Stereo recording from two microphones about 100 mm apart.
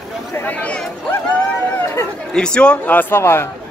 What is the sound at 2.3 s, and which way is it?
A man's voice, 10° left (ahead or behind).